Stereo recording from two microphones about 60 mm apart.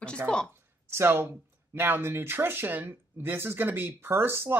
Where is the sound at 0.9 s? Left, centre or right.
Right.